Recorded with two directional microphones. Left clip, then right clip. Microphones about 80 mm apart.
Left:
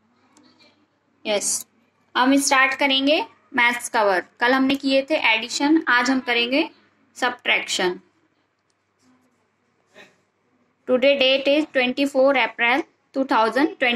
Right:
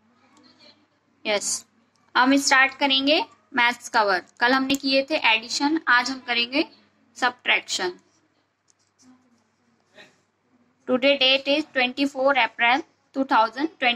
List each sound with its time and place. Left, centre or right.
1.2 s a woman's voice: left
9.1 s a sound: left
10.9 s a woman's voice: left